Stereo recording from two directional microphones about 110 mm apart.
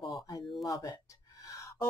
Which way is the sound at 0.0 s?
35° left (ahead or behind).